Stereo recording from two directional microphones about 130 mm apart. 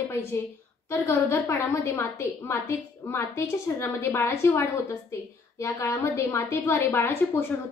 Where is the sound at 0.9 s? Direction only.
20° left (ahead or behind).